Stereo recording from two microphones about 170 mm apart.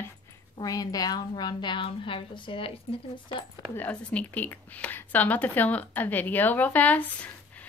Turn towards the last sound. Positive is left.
turn(degrees=10)  # may be behind; listen again after turning